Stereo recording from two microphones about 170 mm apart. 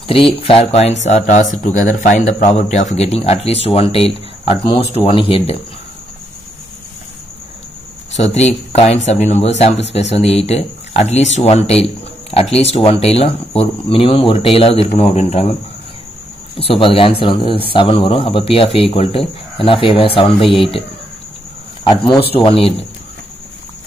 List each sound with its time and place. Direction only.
0.1 s speech: 35° left (ahead or behind)
8.3 s speech: 40° left (ahead or behind)
16.5 s speech: 30° left (ahead or behind)
22.1 s speech: 30° left (ahead or behind)